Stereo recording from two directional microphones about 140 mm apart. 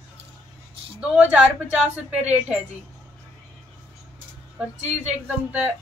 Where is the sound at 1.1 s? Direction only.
10° right (ahead or behind).